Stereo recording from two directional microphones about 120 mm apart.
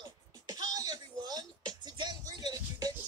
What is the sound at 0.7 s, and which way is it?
Music, 35° right (ahead or behind).